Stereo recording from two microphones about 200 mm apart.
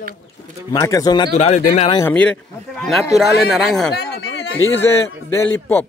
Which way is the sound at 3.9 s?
55° left (ahead or behind).